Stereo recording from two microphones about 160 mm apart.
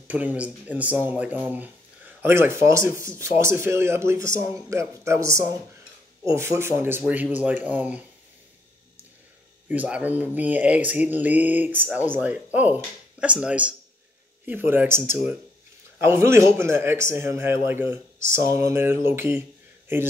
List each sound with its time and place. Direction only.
0.1 s speech: 10° right (ahead or behind)
9.7 s speech: 10° right (ahead or behind)